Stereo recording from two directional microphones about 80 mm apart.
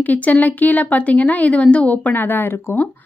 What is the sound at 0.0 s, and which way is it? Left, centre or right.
A woman's voice, centre.